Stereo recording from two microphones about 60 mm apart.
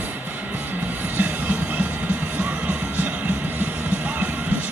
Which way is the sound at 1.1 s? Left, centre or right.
Right.